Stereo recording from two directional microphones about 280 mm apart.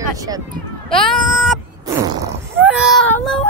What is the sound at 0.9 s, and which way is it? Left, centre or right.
Speech, centre.